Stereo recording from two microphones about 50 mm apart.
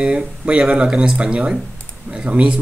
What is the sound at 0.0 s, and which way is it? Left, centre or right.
Speech, right.